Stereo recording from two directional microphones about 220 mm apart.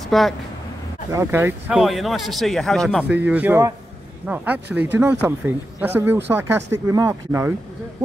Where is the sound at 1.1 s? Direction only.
15° right (ahead or behind).